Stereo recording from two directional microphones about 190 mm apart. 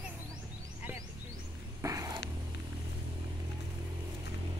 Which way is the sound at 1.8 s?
15° right (ahead or behind).